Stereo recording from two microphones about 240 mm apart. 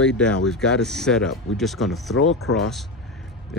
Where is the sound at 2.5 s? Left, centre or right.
Left.